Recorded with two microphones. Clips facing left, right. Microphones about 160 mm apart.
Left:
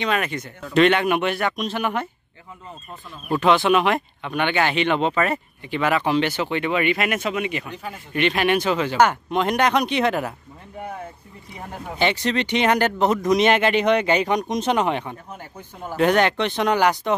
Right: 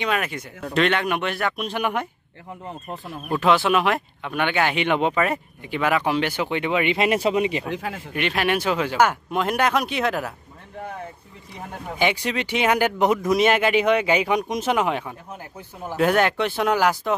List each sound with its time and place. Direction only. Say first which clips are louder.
0.0 s speech: left 1 dB; 5° right (ahead or behind)
1.7 s speech: even; 10° right (ahead or behind)
3.3 s speech: left 2 dB; 5° right (ahead or behind); by 7.7 s 30° right (ahead or behind)
7.7 s speech: right 5 dB; 90° right
8.1 s speech: left 3 dB; 5° right (ahead or behind)
11.9 s speech: left 1 dB; 10° right (ahead or behind)